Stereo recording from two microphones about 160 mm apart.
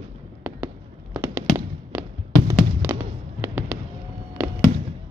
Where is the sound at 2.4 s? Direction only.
15° right (ahead or behind).